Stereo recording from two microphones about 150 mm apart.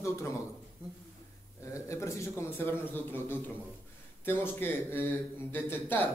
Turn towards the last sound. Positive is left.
turn(degrees=15)  # may be behind; listen again after turning